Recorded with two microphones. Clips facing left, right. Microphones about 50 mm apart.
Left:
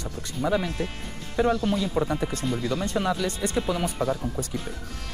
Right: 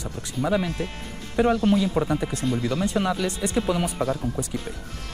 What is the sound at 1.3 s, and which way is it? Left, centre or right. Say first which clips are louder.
Speech: right 3 dB; centre.